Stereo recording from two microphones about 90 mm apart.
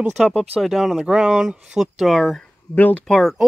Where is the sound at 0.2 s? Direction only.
5° left (ahead or behind).